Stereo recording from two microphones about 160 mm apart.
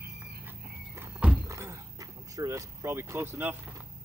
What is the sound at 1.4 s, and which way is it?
Dog, 20° right (ahead or behind).